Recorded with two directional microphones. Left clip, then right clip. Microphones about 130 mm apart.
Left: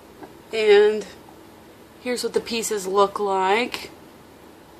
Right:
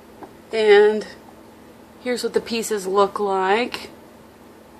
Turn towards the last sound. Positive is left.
turn(degrees=-15)  # may be behind; listen again after turning